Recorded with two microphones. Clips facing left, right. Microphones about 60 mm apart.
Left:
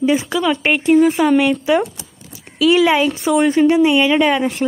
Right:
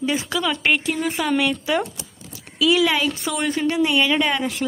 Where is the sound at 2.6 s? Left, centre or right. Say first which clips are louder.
Left 5 dB; left.